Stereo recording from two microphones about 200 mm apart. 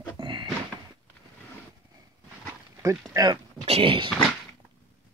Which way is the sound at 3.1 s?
20° right (ahead or behind).